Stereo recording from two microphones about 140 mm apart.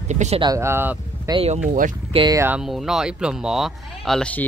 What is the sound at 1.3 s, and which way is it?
Speech, 25° right (ahead or behind).